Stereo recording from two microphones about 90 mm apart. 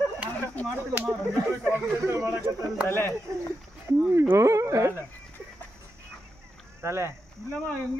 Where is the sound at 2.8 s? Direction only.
25° left (ahead or behind).